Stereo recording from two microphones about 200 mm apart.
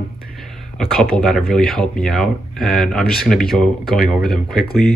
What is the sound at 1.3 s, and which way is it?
Speech, centre (ahead or behind).